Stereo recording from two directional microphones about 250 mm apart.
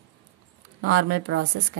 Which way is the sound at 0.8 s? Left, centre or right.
Right.